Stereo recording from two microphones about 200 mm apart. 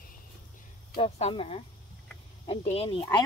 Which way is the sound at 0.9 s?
30° left (ahead or behind).